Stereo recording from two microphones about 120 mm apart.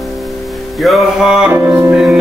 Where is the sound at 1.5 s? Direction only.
15° right (ahead or behind).